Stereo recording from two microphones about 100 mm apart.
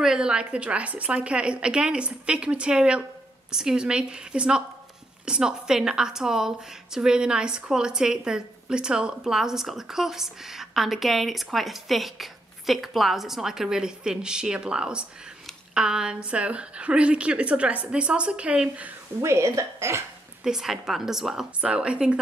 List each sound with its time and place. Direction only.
0.0 s a woman's voice: 5° right (ahead or behind)
19.2 s a woman's voice: 30° right (ahead or behind)
20.4 s a woman's voice: 5° right (ahead or behind)